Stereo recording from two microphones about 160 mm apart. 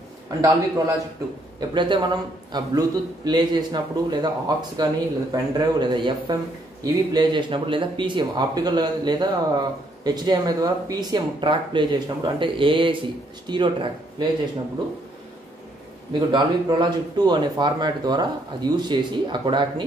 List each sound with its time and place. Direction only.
0.4 s speech: 20° right (ahead or behind)
16.1 s speech: 30° right (ahead or behind)